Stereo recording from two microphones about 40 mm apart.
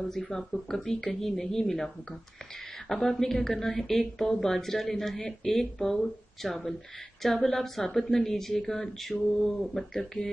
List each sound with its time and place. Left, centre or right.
0.1 s speech: centre
2.9 s speech: centre
7.2 s a sound: centre
7.8 s speech: centre
9.1 s a sound: centre
9.9 s speech: centre